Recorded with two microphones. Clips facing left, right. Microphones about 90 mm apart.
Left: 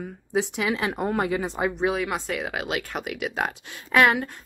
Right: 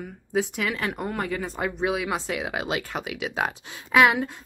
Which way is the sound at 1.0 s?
25° left (ahead or behind).